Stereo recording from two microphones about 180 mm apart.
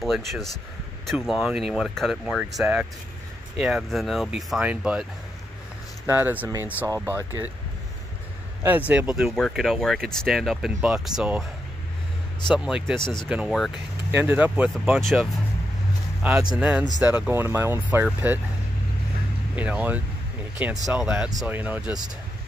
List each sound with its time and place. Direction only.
0.0 s speech: centre (ahead or behind)
6.0 s speech: 10° right (ahead or behind)
8.6 s speech: 10° right (ahead or behind)
12.5 s speech: 5° right (ahead or behind)
13.0 s speech: 25° left (ahead or behind)
13.3 s speech: 5° right (ahead or behind)
19.5 s speech: 10° right (ahead or behind)